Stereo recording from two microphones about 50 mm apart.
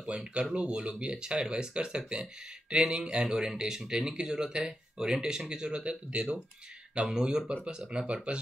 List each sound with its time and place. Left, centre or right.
0.0 s speech: right